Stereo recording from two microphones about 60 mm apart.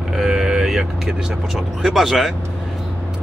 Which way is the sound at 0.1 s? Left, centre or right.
Centre.